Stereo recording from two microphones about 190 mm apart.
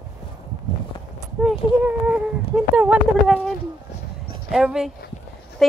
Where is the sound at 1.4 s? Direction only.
5° right (ahead or behind).